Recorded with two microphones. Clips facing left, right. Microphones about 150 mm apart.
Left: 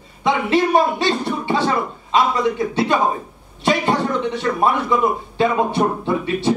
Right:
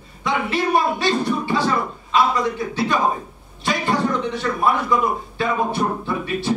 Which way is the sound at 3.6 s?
20° left (ahead or behind).